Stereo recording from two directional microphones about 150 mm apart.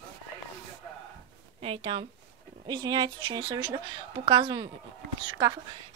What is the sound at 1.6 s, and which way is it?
A woman's voice, 35° right (ahead or behind).